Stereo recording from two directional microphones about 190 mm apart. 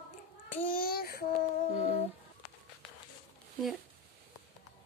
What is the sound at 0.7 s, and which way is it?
Babbling, 50° left (ahead or behind).